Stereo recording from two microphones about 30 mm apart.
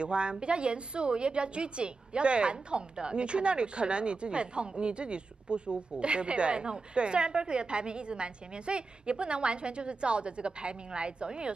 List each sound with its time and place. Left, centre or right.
0.0 s a woman's voice: right